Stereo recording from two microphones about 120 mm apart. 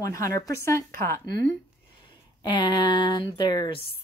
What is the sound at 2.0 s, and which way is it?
A woman's voice, 40° left (ahead or behind).